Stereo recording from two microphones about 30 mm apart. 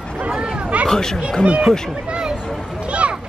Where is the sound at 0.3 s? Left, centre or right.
Right.